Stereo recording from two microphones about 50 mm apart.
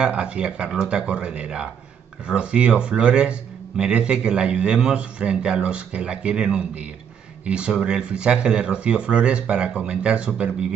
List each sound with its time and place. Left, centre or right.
0.0 s a man's voice: right